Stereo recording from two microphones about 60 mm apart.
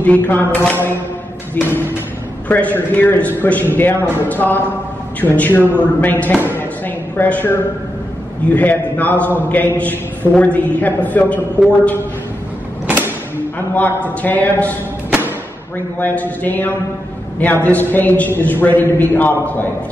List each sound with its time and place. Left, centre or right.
0.0 s a man's voice: left
1.6 s a man's voice: left
12.8 s a sound: right
14.2 s a man's voice: left
16.0 s a man's voice: left